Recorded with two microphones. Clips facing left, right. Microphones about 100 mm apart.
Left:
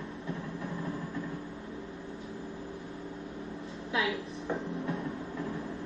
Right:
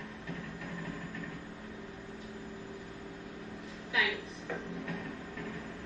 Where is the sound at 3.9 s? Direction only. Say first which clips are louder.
Left 2 dB; 30° left (ahead or behind).